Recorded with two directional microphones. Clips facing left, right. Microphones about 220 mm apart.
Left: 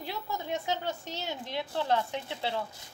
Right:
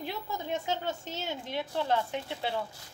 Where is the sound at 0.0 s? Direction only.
20° right (ahead or behind).